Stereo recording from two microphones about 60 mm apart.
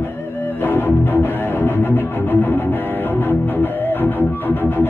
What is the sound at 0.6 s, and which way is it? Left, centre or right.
Music, left.